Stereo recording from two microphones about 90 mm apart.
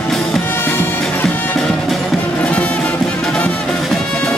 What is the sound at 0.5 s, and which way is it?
Music, 25° left (ahead or behind).